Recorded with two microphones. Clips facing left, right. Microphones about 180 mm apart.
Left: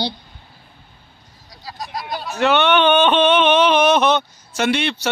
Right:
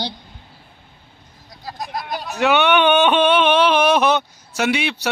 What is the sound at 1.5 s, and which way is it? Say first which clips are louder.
Vehicle: right 2 dB; 50° right (ahead or behind).